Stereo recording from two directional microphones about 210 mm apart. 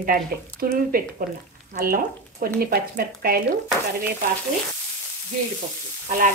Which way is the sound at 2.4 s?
45° right (ahead or behind).